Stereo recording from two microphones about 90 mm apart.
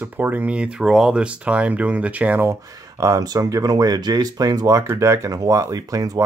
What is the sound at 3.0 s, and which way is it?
Speech, 40° right (ahead or behind).